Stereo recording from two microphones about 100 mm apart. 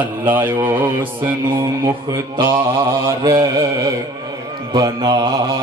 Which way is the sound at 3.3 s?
35° right (ahead or behind).